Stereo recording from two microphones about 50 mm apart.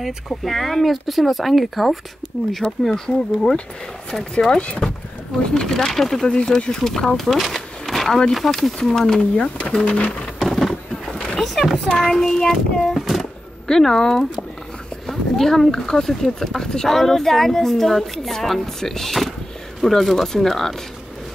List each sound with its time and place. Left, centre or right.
0.3 s speech: centre
4.1 s speech: centre
4.6 s speech: left
5.5 s speech: centre
6.3 s speech: centre
10.4 s a sound: centre
12.0 s speech: centre
13.2 s a sound: centre
15.0 s speech: centre